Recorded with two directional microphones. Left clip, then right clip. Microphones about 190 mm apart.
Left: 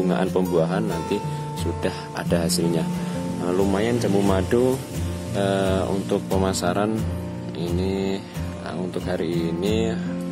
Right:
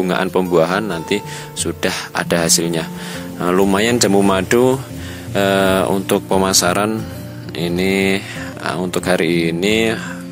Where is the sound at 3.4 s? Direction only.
25° right (ahead or behind).